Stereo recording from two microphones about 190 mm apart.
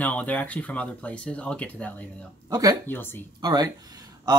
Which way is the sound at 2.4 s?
20° right (ahead or behind).